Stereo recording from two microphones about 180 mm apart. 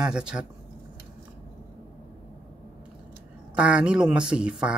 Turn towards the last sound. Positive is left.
turn(degrees=-5)  # may be behind; listen again after turning